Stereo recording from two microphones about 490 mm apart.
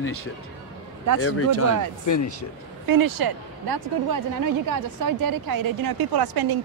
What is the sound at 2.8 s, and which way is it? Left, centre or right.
Speech, right.